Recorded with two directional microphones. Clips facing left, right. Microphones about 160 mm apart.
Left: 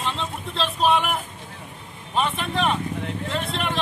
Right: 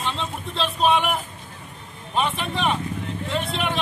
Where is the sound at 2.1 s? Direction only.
Centre (ahead or behind).